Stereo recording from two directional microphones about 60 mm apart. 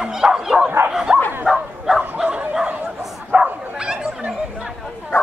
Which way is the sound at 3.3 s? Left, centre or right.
Centre.